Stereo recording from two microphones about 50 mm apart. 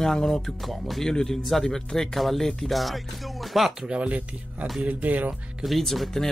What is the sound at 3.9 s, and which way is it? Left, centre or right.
Speech, right.